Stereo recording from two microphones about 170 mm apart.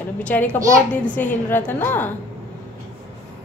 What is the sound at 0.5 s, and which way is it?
Speech, 20° right (ahead or behind).